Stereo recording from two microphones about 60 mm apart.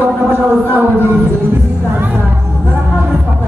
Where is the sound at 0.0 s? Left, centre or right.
Right.